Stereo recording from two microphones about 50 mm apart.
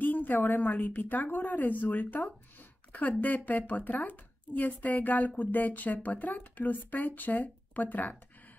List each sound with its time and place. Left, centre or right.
0.0 s a woman's voice: left